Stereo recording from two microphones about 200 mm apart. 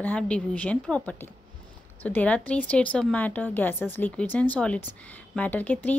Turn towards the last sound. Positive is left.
turn(degrees=10)  # may be behind; listen again after turning